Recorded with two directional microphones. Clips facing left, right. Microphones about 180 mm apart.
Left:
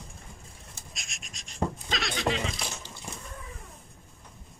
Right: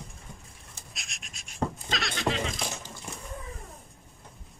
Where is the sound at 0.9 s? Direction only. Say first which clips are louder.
Even; centre (ahead or behind).